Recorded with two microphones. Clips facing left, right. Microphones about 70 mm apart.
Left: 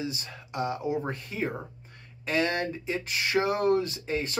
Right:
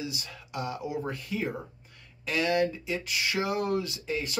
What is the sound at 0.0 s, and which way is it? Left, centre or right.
Speech, left.